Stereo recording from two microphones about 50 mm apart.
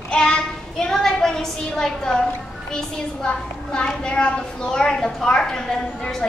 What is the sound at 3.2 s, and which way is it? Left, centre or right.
A woman's voice, left.